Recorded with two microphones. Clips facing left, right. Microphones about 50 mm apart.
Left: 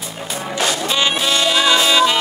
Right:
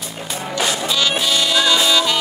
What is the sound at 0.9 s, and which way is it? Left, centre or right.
Music, left.